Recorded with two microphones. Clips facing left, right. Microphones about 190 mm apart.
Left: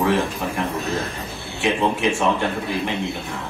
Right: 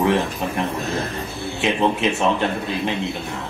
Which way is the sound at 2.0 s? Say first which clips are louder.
Even; 20° right (ahead or behind).